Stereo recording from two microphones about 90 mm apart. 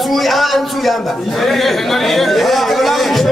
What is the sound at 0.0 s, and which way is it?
A man's voice, centre (ahead or behind).